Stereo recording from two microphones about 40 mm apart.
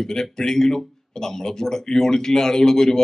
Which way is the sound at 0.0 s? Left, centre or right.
Centre.